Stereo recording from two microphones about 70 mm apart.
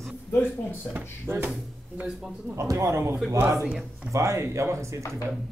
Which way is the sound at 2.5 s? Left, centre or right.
Right.